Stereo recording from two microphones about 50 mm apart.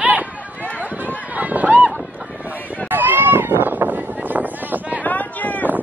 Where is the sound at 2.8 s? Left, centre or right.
Right.